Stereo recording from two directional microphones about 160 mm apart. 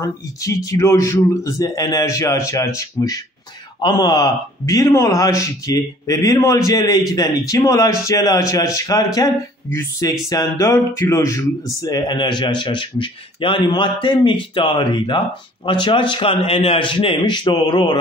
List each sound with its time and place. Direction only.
0.0 s speech: 20° left (ahead or behind)